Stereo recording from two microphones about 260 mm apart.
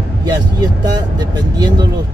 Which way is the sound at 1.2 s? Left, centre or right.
Centre.